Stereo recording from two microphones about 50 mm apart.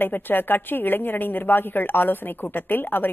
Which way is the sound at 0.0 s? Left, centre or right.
Left.